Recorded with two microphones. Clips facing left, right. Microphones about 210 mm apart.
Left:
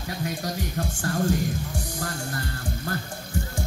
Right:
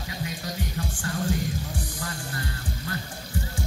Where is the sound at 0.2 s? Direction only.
50° left (ahead or behind).